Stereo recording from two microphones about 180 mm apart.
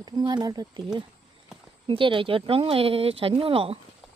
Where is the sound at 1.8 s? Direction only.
30° right (ahead or behind).